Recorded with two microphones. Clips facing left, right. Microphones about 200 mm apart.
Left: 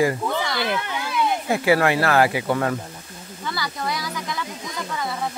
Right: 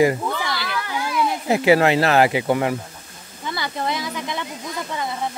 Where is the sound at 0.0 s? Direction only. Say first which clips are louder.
Right 2 dB; 20° right (ahead or behind).